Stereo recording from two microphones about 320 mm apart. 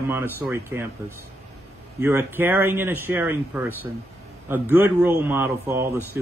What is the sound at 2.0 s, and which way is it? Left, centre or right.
Speech, centre.